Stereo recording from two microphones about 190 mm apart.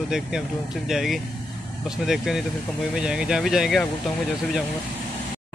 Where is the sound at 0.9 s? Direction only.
Centre (ahead or behind).